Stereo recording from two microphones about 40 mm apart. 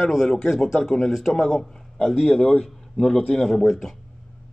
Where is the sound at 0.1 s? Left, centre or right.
Centre.